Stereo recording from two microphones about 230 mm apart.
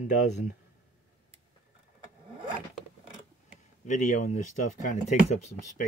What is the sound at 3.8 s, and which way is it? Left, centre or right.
Speech, left.